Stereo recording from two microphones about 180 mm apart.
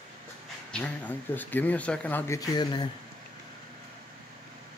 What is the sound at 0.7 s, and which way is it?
Speech, 10° left (ahead or behind).